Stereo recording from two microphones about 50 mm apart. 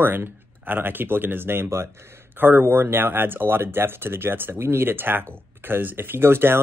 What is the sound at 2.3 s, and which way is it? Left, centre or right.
Speech, right.